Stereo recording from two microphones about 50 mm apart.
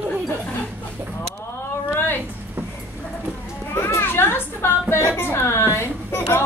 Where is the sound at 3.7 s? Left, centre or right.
Left.